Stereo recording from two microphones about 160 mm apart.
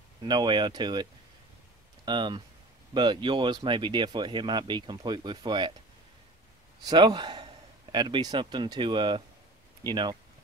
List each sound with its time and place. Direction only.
0.2 s speech: 30° right (ahead or behind)
2.0 s speech: 30° right (ahead or behind)
6.8 s a man's voice: 25° right (ahead or behind)